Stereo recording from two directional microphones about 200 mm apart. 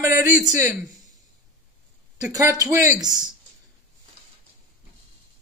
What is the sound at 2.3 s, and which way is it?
Speech, 15° right (ahead or behind).